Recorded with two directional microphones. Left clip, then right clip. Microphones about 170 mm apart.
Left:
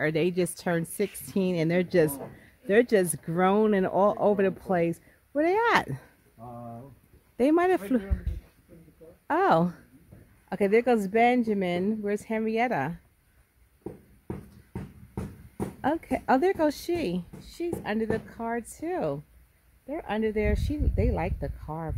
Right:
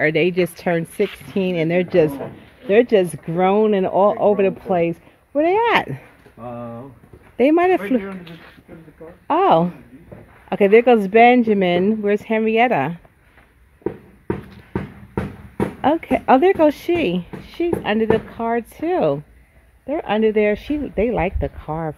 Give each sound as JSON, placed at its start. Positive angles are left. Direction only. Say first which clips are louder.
{"t": 0.0, "sound": "speech", "louder": "right 9 dB", "side_deg": 30}
{"t": 7.3, "sound": "speech", "louder": "right 8 dB", "side_deg": 30}
{"t": 9.3, "sound": "speech", "louder": "right 8 dB", "side_deg": 40}
{"t": 10.5, "sound": "a woman's voice", "louder": "right 11 dB", "side_deg": 15}
{"t": 15.8, "sound": "a woman's voice", "louder": "right 10 dB", "side_deg": 15}